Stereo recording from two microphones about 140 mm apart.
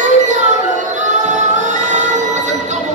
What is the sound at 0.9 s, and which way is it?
Music, 60° right (ahead or behind).